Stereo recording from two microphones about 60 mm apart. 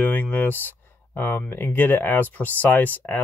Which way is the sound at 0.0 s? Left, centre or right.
Left.